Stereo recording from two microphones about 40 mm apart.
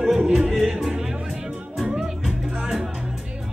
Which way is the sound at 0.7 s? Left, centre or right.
Centre.